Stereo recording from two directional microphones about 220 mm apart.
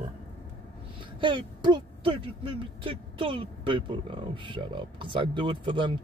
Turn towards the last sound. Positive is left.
turn(degrees=-20)  # may be behind; listen again after turning